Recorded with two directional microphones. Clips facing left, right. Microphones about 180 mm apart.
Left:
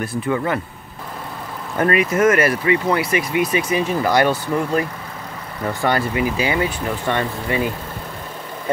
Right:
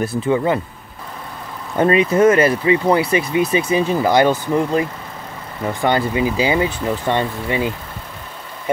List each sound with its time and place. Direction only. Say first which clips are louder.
0.0 s speech: right 4 dB; 25° right (ahead or behind)
1.8 s speech: right 3 dB; 25° right (ahead or behind)